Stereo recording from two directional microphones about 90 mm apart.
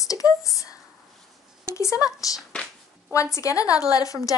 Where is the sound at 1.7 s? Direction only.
35° left (ahead or behind).